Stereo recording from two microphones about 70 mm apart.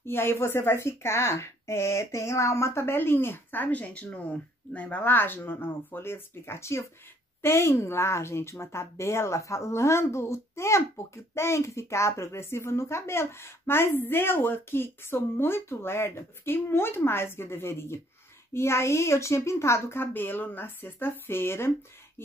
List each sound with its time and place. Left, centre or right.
0.0 s a woman's voice: left